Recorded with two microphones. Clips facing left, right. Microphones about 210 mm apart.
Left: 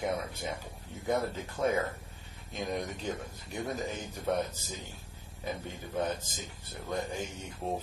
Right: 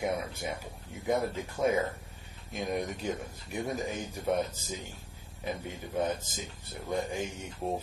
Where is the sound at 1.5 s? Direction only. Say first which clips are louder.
Right 2 dB; 20° right (ahead or behind).